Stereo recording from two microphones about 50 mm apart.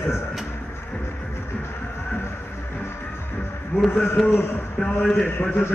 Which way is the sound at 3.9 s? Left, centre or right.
Left.